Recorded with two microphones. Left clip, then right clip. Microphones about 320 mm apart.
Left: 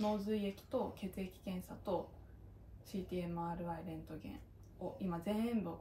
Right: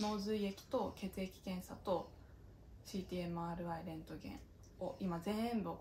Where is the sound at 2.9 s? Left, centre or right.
Centre.